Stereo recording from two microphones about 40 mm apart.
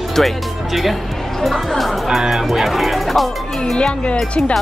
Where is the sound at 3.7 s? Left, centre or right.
Left.